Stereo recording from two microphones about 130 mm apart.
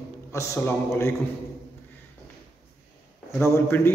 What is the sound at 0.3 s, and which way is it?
Speech, 20° left (ahead or behind).